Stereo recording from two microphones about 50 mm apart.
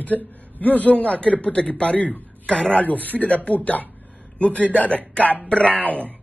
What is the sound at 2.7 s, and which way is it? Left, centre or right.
A man's voice, left.